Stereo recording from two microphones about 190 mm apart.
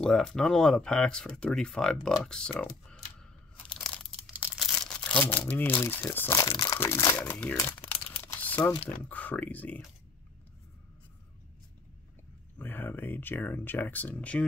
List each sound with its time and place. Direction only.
0.0 s speech: 5° left (ahead or behind)
3.6 s crumpling: 5° left (ahead or behind); by 6.8 s 20° left (ahead or behind)
6.8 s speech: 15° left (ahead or behind)
7.3 s crumpling: 10° left (ahead or behind)
9.1 s speech: 10° left (ahead or behind)
12.5 s speech: 10° left (ahead or behind)